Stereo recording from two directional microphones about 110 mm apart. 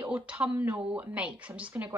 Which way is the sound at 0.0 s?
10° right (ahead or behind).